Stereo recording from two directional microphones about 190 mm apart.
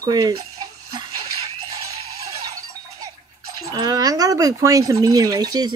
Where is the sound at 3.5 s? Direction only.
20° right (ahead or behind).